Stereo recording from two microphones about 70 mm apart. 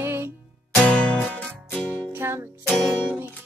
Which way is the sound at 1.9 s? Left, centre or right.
Right.